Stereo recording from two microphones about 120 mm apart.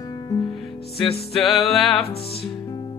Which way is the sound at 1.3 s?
Centre (ahead or behind).